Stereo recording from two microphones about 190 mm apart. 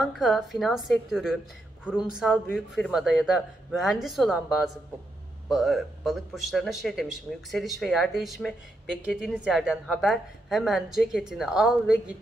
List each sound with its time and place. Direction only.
0.0 s a woman's voice: centre (ahead or behind)